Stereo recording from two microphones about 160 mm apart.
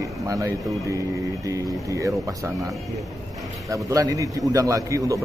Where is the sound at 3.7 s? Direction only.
20° right (ahead or behind).